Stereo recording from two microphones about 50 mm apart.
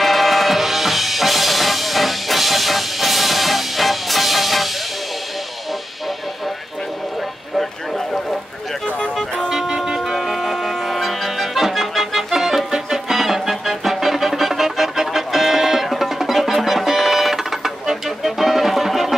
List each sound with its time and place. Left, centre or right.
0.0 s music: centre
7.5 s a sound: centre
8.8 s music: left
9.5 s music: centre